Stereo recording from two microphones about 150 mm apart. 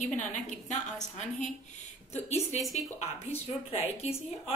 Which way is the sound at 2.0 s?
45° left (ahead or behind).